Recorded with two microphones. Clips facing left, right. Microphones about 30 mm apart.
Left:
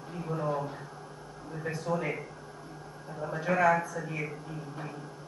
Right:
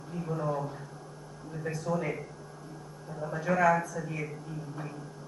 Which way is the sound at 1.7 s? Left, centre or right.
Left.